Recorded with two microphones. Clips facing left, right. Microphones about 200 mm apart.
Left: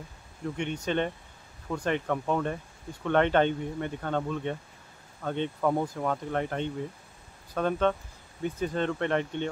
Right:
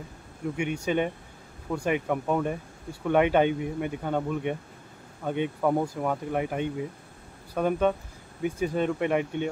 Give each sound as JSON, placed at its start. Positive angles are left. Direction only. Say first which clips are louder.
{"t": 0.6, "sound": "speech", "louder": "right 2 dB", "side_deg": -10}